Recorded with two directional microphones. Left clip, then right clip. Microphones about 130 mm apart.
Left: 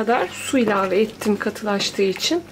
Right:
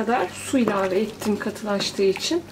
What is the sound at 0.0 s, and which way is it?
Speech, 30° left (ahead or behind).